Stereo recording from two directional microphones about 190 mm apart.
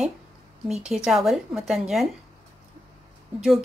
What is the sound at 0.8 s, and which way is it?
A woman's voice, 5° right (ahead or behind).